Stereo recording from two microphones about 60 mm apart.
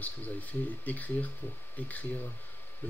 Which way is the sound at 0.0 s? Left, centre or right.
Left.